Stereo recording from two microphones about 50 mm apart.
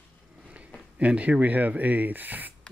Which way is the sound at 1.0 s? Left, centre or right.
Right.